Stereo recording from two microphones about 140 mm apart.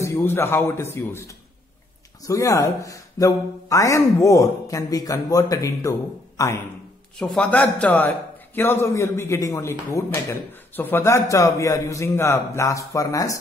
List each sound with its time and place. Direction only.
0.0 s a man's voice: 15° left (ahead or behind)
7.2 s a man's voice: 10° left (ahead or behind); by 13.4 s 25° left (ahead or behind)